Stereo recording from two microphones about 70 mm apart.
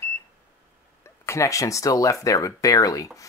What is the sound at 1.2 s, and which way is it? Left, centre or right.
Speech, left.